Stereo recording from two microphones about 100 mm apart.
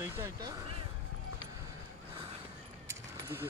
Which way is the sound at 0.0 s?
25° right (ahead or behind).